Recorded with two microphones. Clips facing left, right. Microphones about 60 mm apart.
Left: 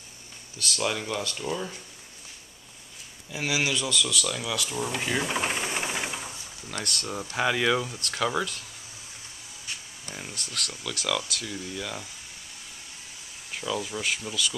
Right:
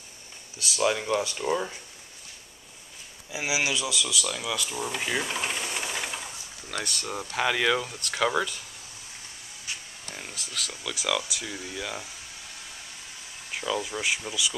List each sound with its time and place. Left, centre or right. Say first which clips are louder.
0.6 s speech: right 3 dB; centre
1.4 s speech: right 4 dB; right
3.3 s speech: even; centre
5.3 s engine: left 3 dB; centre
6.8 s speech: even; centre
10.2 s speech: left 1 dB; centre
13.7 s speech: right 1 dB; right
14.0 s speech: right 1 dB; centre